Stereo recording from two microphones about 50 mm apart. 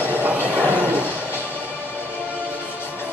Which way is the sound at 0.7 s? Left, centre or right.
Right.